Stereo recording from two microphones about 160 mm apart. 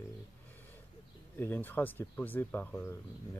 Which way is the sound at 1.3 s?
10° left (ahead or behind).